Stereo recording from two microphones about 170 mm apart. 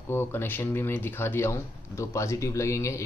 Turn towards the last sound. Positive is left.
turn(degrees=15)  # may be behind; listen again after turning